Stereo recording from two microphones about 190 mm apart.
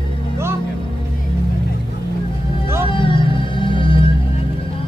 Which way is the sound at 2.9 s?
25° left (ahead or behind).